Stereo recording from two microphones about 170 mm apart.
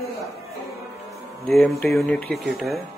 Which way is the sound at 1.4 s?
Centre (ahead or behind).